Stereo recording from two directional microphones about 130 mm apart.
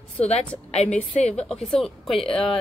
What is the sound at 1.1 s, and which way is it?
Speech, 55° left (ahead or behind).